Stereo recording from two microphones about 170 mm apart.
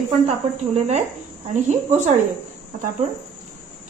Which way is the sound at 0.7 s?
40° right (ahead or behind).